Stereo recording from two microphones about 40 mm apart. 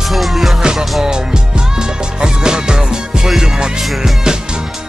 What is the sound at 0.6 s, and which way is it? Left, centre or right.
Music, centre.